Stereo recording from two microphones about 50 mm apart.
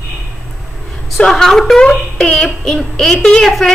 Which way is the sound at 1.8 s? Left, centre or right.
Centre.